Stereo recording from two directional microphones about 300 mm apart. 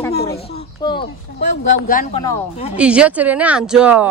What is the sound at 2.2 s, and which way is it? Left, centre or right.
Speech, centre.